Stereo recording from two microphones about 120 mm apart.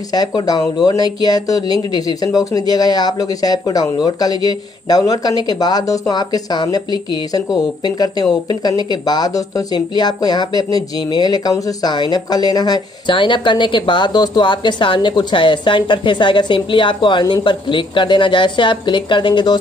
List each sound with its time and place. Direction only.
0.1 s speech: 35° left (ahead or behind)